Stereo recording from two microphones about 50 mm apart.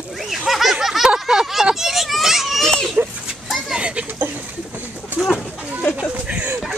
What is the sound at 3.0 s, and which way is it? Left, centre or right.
Children playing, right.